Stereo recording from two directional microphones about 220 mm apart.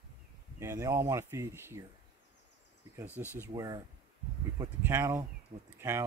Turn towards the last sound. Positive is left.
turn(degrees=-10)  # may be behind; listen again after turning